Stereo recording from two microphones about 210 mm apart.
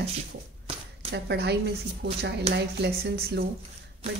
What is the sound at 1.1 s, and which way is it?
A woman's voice, 50° right (ahead or behind).